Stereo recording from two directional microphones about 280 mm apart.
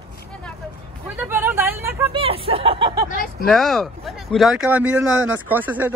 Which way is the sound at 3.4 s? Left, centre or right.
Centre.